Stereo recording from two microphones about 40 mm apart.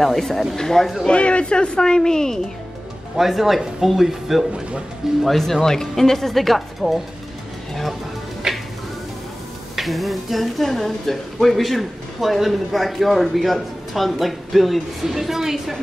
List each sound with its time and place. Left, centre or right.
0.0 s a woman's voice: centre
1.0 s a man's voice: left
3.2 s a woman's voice: centre
5.4 s speech: centre
9.8 s a woman's voice: centre